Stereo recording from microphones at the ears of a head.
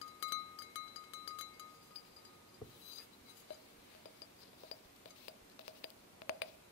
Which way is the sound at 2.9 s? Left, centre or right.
Left.